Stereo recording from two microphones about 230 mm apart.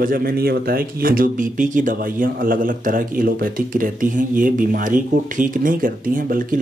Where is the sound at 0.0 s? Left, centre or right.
Right.